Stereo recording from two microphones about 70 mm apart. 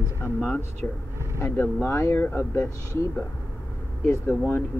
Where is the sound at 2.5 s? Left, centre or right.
Left.